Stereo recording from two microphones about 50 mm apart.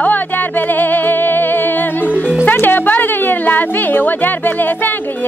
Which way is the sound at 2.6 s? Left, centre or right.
Left.